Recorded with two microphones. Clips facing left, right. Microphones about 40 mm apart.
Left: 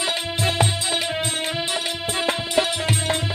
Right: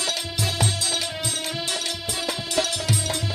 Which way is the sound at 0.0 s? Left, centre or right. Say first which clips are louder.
Left 4 dB; left.